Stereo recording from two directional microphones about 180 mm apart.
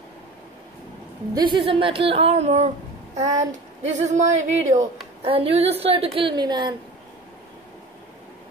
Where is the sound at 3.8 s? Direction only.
40° right (ahead or behind); by 6.7 s 25° right (ahead or behind).